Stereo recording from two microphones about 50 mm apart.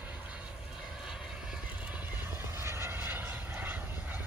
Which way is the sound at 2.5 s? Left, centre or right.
Right.